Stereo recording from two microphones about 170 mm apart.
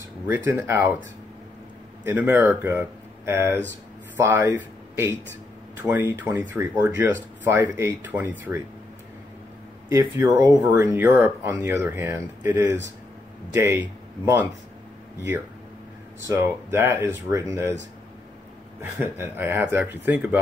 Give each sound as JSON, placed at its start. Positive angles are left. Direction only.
{"t": 0.3, "sound": "speech", "side_deg": -15}
{"t": 2.0, "sound": "speech", "side_deg": -10}
{"t": 9.8, "sound": "speech", "side_deg": -20}
{"t": 16.3, "sound": "speech", "side_deg": -15}
{"t": 18.8, "sound": "speech", "side_deg": -15}